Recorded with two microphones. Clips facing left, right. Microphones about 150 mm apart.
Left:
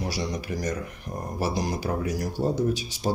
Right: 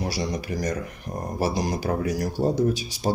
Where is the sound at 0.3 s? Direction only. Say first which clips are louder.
Right 2 dB; 40° right (ahead or behind).